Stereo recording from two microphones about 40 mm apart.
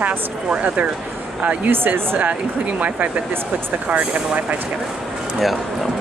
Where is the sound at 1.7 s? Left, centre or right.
Right.